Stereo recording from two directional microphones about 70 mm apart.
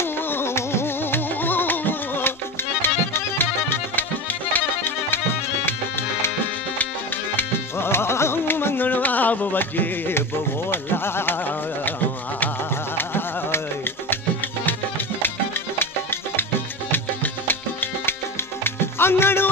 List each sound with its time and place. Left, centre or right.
0.0 s music: left
7.3 s music: left
10.7 s a sound: left
12.9 s carnatic music: left
15.8 s music: left